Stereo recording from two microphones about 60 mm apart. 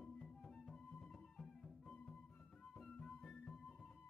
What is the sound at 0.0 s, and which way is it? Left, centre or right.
Music, centre.